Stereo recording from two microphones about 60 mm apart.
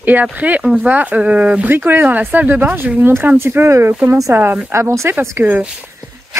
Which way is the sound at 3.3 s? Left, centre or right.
Right.